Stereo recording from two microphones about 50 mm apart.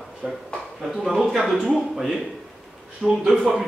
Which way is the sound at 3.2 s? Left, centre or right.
Centre.